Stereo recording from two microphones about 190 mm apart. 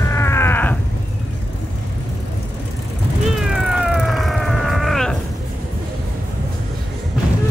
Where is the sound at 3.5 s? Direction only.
Centre (ahead or behind).